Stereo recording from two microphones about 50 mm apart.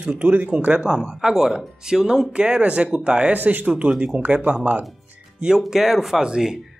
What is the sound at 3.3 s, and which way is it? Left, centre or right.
Speech, right.